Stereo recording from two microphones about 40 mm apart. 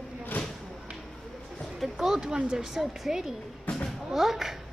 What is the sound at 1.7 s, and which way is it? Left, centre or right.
Speech, centre.